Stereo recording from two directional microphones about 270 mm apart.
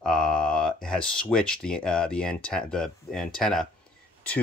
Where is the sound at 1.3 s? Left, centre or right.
Centre.